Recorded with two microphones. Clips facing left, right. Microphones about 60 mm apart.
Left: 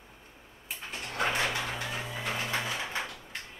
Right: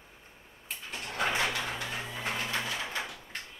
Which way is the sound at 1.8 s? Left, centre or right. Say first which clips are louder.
Left 1 dB; centre.